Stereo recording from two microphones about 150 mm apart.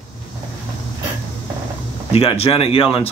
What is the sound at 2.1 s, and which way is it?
Speech, 40° left (ahead or behind).